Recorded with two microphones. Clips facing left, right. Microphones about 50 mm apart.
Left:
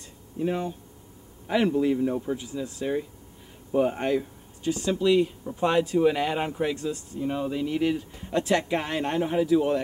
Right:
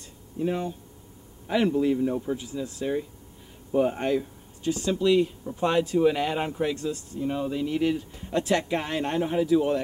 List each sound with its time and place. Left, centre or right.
0.4 s speech: centre